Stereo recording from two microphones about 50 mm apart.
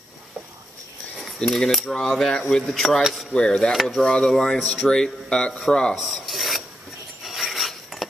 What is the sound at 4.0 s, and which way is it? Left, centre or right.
A man's voice, centre.